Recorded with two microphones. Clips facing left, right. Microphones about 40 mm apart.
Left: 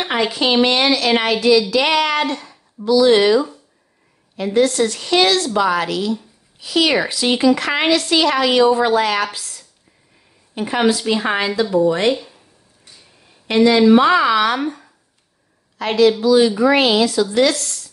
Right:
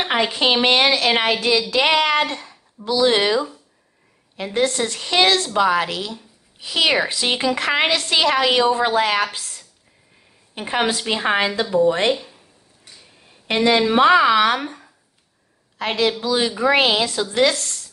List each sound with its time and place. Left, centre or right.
0.0 s a woman's voice: right
4.6 s a woman's voice: right
13.5 s a woman's voice: right
14.6 s speech: centre
15.8 s a woman's voice: right